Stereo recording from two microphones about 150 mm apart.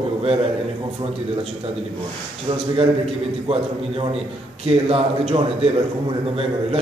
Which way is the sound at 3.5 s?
40° right (ahead or behind).